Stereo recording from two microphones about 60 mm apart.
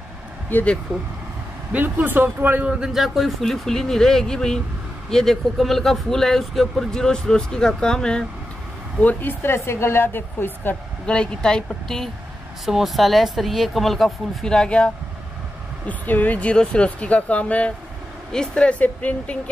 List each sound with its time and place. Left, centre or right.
0.5 s a woman's voice: left
1.7 s speech: right
2.7 s a man's voice: centre
3.0 s speech: centre
9.0 s a woman's voice: left
11.1 s speech: centre
12.6 s speech: centre
14.4 s speech: centre
15.9 s speech: left